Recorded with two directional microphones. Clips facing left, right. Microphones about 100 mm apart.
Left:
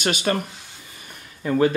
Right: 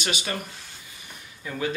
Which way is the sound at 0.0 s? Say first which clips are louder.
Left 8 dB; 50° left (ahead or behind).